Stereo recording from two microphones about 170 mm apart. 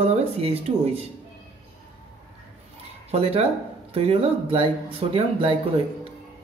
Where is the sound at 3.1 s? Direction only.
35° right (ahead or behind).